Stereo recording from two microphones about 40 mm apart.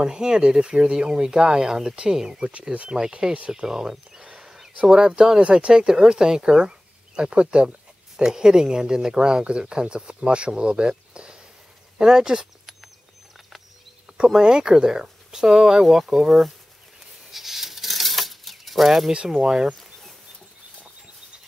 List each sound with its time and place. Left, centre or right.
0.0 s speech: centre
3.6 s speech: centre
4.2 s a sound: centre
4.8 s speech: centre
5.4 s speech: right
14.1 s speech: right; by 16.5 s centre
17.3 s a sound: centre
19.1 s speech: centre
19.8 s a sound: centre